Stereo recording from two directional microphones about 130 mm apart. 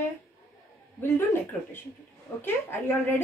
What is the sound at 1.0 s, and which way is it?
Speech, 20° left (ahead or behind).